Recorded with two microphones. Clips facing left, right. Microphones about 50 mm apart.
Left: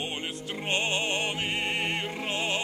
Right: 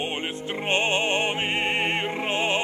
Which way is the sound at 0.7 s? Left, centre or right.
Right.